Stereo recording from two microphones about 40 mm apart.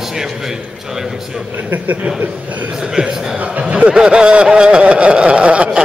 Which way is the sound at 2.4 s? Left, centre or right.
Right.